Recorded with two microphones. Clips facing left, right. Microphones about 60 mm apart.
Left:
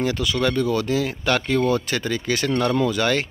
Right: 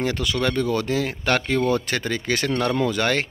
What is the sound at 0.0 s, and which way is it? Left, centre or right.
Speech, right.